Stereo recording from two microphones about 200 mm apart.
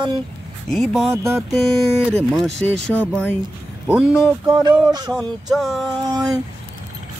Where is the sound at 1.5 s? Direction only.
Centre (ahead or behind).